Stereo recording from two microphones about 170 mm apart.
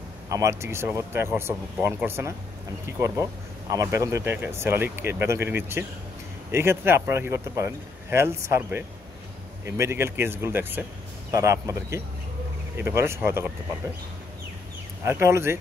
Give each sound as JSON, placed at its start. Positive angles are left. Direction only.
{"t": 0.3, "sound": "speech", "side_deg": -15}
{"t": 3.7, "sound": "speech", "side_deg": -15}
{"t": 15.0, "sound": "speech", "side_deg": -15}